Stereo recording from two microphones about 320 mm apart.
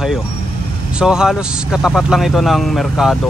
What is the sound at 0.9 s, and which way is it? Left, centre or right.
A man's voice, centre.